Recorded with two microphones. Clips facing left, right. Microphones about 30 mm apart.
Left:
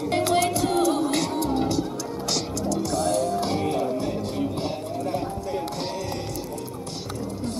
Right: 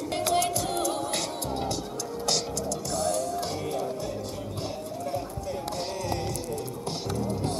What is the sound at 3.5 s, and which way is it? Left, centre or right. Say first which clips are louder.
Music: left 6 dB; left.